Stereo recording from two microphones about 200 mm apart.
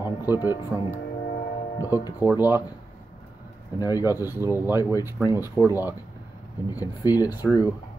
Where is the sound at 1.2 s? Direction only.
40° left (ahead or behind).